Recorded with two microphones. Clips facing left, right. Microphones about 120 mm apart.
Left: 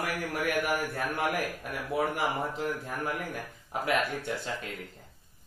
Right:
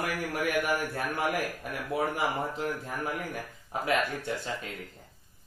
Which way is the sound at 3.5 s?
Centre (ahead or behind).